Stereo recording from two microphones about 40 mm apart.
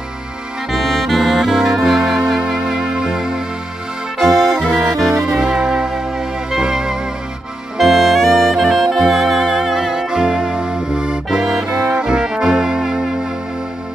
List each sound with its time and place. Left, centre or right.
0.7 s saxophone: centre
4.2 s saxophone: centre
5.1 s music: centre
7.7 s saxophone: centre; by 11.1 s right
11.2 s accordion: centre
11.9 s brass instrument: centre